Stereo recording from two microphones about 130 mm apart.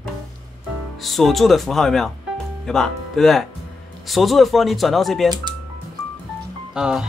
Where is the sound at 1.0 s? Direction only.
Centre (ahead or behind).